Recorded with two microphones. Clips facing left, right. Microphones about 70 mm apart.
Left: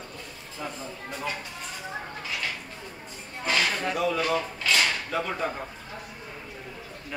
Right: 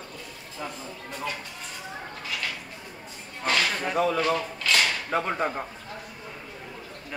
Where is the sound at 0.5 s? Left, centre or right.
Centre.